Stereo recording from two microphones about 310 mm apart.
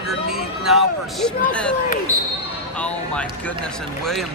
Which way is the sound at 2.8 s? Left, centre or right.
Centre.